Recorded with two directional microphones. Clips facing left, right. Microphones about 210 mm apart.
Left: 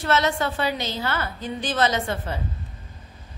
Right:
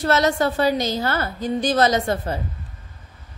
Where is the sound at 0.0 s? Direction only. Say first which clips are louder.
Right 4 dB; 40° right (ahead or behind).